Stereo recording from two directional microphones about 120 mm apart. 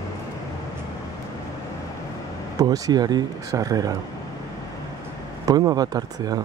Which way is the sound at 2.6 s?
30° right (ahead or behind).